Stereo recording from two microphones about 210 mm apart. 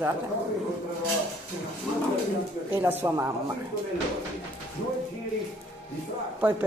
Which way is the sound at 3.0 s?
15° right (ahead or behind).